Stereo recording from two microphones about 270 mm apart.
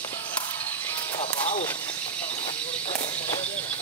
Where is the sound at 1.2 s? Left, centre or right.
Left.